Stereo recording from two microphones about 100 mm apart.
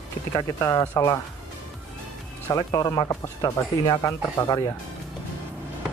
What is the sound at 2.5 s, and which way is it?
Speech, 35° left (ahead or behind).